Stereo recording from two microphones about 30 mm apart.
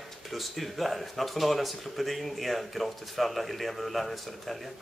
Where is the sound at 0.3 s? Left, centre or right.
Centre.